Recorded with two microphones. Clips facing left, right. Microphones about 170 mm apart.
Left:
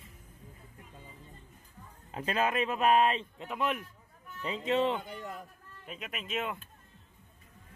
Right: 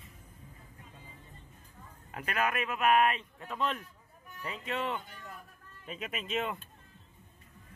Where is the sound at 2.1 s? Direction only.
25° left (ahead or behind).